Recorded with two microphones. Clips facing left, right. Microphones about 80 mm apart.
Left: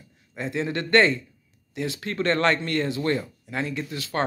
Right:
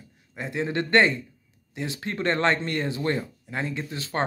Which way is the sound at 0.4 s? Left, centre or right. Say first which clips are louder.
Even; centre.